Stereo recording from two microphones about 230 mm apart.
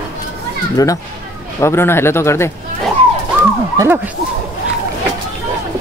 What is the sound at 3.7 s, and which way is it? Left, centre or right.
Speech, centre.